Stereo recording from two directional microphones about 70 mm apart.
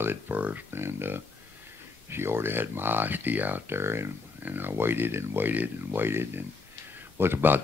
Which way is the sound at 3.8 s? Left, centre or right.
Right.